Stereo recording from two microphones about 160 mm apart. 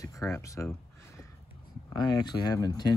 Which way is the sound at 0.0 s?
20° left (ahead or behind).